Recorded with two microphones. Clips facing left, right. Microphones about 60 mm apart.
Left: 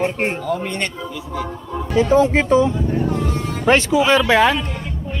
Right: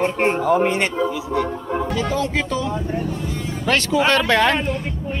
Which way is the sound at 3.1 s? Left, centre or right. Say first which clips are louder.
Left 4 dB; left.